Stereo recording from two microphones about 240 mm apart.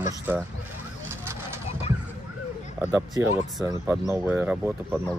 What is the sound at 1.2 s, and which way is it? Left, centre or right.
Vehicle, centre.